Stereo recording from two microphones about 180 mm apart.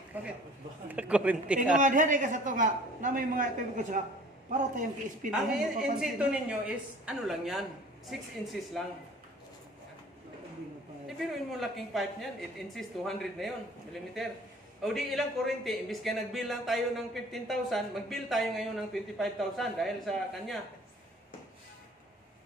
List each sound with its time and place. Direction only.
0.1 s speech: 10° right (ahead or behind)
1.8 s a man's voice: 45° right (ahead or behind)
5.3 s a man's voice: 5° right (ahead or behind)
11.6 s a man's voice: centre (ahead or behind)
14.8 s a man's voice: centre (ahead or behind)